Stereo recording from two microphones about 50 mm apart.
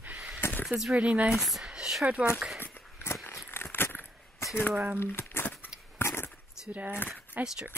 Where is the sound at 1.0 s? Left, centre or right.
Right.